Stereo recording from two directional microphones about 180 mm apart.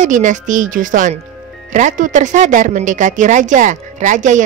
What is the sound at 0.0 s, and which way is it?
Speech, 45° right (ahead or behind).